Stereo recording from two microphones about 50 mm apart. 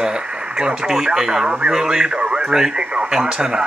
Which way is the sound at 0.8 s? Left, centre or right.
Centre.